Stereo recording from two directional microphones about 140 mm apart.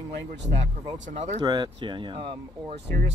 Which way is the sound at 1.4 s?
30° right (ahead or behind).